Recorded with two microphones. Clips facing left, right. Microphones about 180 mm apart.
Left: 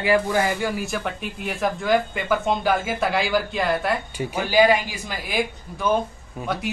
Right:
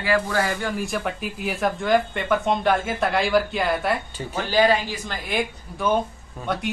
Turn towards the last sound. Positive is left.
turn(degrees=0)  # may be behind; listen again after turning